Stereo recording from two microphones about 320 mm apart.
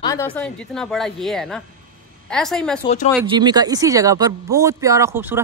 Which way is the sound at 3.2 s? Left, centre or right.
Centre.